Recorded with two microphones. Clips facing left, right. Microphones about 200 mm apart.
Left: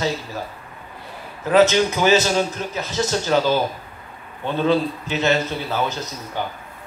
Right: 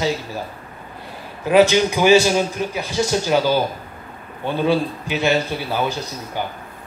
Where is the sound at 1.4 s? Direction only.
15° right (ahead or behind).